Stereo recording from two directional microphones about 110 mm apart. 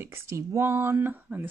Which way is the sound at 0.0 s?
25° right (ahead or behind).